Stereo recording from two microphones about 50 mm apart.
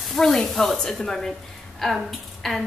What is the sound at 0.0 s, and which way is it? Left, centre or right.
A woman's voice, centre.